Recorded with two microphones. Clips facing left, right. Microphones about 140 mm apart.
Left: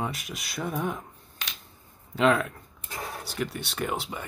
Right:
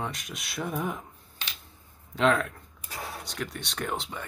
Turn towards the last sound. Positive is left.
turn(degrees=5)  # may be behind; listen again after turning